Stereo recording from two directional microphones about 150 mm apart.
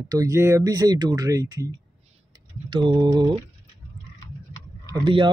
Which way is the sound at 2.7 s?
30° right (ahead or behind).